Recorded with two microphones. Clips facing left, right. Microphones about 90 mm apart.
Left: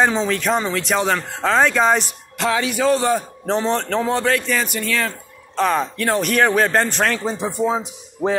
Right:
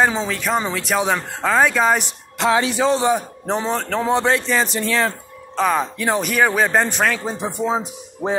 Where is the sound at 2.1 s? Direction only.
25° right (ahead or behind); by 4.0 s 5° right (ahead or behind).